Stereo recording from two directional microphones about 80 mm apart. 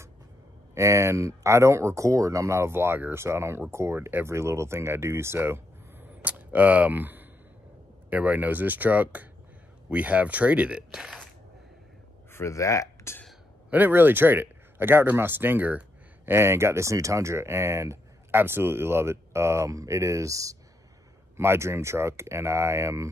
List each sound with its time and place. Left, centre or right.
0.7 s speech: right
6.2 s speech: right
12.3 s speech: left
13.7 s speech: right
21.4 s speech: right